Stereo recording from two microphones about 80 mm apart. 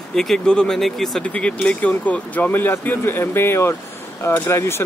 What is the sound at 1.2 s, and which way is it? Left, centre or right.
Speech, centre.